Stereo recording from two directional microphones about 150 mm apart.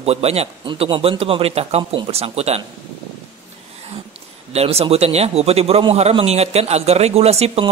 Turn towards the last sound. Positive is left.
turn(degrees=-40)  # may be behind; listen again after turning